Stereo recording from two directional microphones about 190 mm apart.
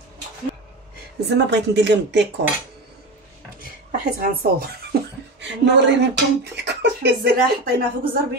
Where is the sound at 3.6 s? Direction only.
50° right (ahead or behind); by 6.1 s 65° right (ahead or behind).